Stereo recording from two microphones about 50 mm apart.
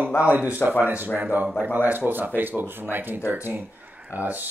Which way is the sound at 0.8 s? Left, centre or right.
Right.